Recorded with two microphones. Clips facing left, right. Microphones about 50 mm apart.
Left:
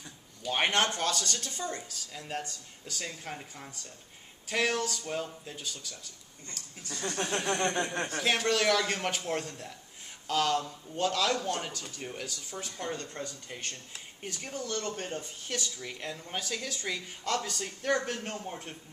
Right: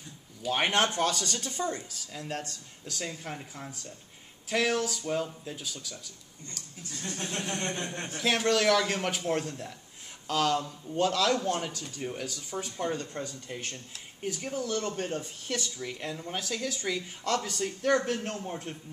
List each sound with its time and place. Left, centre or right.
0.4 s speech: centre
6.9 s a sound: left
8.2 s speech: centre